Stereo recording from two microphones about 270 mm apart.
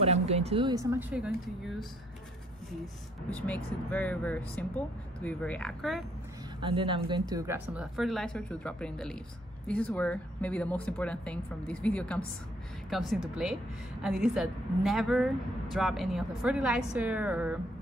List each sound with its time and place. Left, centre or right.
0.0 s speech: right; by 1.3 s centre
3.3 s speech: centre
6.6 s speech: centre